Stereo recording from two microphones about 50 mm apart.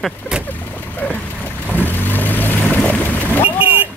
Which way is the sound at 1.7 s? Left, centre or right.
Left.